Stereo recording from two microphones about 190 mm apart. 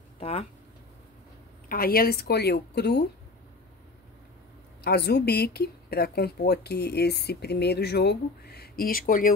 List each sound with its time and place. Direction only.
0.2 s speech: 30° left (ahead or behind)
1.7 s a woman's voice: 50° left (ahead or behind)
4.8 s a woman's voice: 60° left (ahead or behind)